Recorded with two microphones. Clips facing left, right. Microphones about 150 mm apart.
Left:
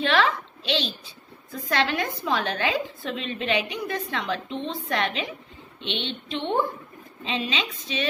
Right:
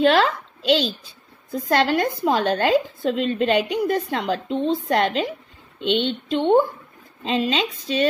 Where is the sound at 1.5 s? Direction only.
40° right (ahead or behind).